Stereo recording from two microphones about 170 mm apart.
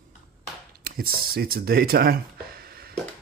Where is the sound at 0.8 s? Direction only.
60° right (ahead or behind).